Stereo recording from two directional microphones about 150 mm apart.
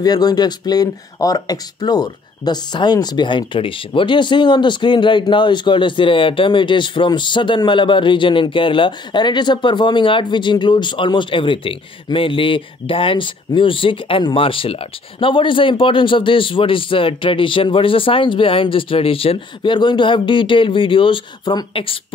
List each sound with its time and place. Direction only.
0.0 s speech: 25° left (ahead or behind)